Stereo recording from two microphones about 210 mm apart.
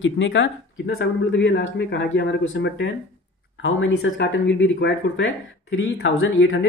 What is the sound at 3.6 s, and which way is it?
Speech, 65° left (ahead or behind).